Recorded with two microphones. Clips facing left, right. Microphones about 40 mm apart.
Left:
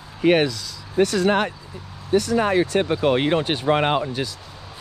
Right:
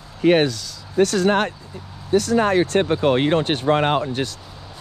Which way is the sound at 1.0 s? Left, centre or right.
Right.